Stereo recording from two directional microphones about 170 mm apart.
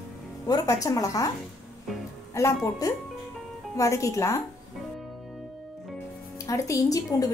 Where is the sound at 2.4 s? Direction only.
20° left (ahead or behind).